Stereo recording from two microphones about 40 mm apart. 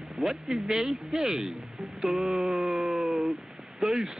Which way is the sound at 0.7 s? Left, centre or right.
Centre.